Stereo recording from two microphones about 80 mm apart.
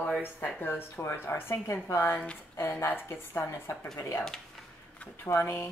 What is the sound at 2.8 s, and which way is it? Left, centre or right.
Speech, left.